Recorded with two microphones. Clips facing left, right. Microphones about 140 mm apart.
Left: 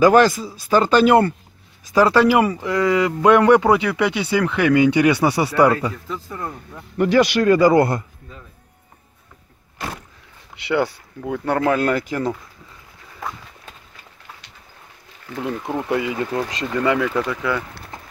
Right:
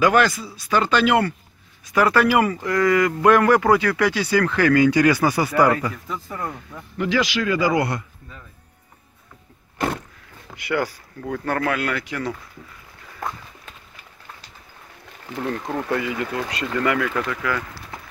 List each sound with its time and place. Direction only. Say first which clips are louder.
0.0 s speech: left 5 dB; 35° left (ahead or behind)
2.0 s speech: left 3 dB; 25° left (ahead or behind)
7.0 s speech: left 6 dB; 50° left (ahead or behind)
7.7 s a man's voice: left 6 dB; 30° left (ahead or behind)
10.5 s speech: left 3 dB; 20° left (ahead or behind)
11.7 s speech: left 6 dB; 35° left (ahead or behind)
15.4 s speech: left 1 dB; 5° left (ahead or behind)
15.9 s speech: left 3 dB; 20° left (ahead or behind)